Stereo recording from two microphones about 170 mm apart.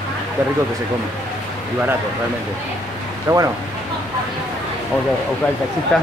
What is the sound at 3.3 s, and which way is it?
Speech, 20° right (ahead or behind).